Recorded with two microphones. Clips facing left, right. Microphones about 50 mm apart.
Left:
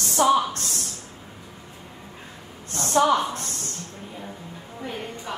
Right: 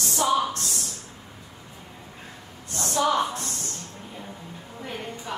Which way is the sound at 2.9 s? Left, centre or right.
Left.